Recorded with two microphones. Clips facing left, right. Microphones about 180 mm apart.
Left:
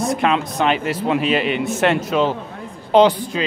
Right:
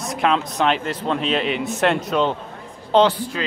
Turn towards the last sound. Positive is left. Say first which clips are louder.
# left 3 dB
turn(degrees=15)  # may be behind; listen again after turning